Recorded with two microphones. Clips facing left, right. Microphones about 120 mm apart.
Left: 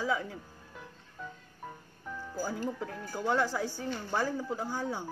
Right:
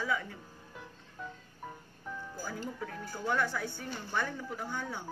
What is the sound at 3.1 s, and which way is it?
Speech, 25° left (ahead or behind).